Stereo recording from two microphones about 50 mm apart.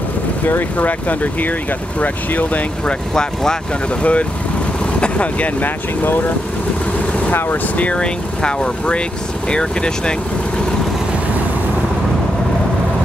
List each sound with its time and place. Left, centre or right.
0.5 s speech: left
4.0 s speech: left
7.7 s speech: left